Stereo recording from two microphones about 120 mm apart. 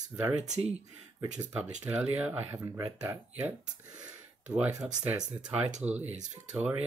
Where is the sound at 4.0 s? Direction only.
10° right (ahead or behind).